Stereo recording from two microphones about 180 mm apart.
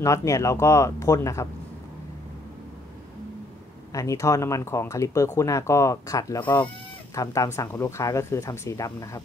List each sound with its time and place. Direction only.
0.0 s speech: 15° left (ahead or behind)
3.9 s speech: 15° left (ahead or behind)